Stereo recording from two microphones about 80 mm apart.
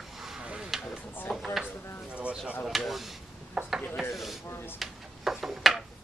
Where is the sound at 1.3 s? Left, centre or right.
Centre.